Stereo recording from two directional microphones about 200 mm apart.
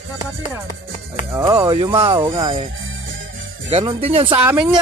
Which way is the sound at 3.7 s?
25° right (ahead or behind).